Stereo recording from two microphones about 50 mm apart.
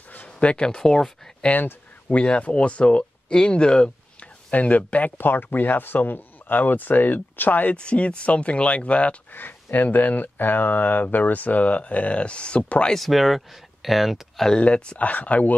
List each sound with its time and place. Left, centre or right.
0.1 s speech: left; by 1.3 s centre
2.0 s speech: left
4.5 s speech: left
5.1 s speech: left
7.7 s speech: left
9.3 s speech: left
12.9 s speech: centre
14.6 s speech: left